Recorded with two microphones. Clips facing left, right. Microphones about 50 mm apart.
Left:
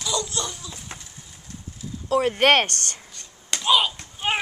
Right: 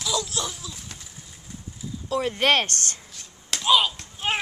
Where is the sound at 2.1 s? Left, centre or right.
Centre.